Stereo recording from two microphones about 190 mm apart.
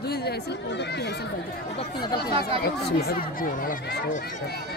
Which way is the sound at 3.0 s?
50° left (ahead or behind).